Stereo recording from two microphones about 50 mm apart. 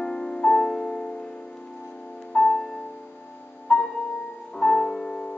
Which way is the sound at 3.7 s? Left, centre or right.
Left.